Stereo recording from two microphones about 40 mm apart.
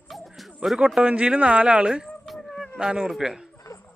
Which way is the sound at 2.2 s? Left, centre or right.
Centre.